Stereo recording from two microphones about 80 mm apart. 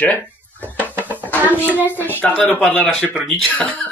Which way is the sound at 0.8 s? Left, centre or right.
Left.